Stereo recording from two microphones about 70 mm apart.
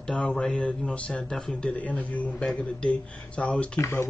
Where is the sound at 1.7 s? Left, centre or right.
Left.